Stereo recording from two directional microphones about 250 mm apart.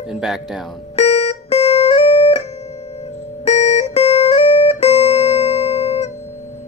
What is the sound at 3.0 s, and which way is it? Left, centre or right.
Guitar, left.